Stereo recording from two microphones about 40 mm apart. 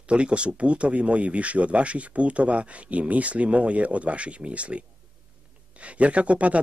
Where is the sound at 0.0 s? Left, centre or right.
Right.